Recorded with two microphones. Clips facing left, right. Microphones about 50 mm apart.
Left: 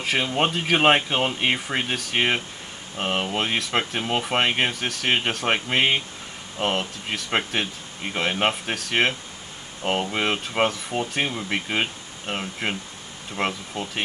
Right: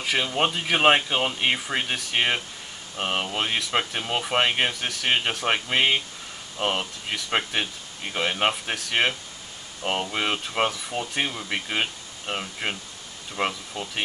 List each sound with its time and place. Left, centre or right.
0.0 s speech: centre